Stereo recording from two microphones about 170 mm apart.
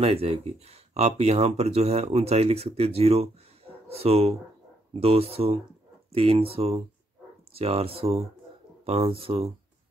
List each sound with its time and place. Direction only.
0.0 s speech: 35° right (ahead or behind)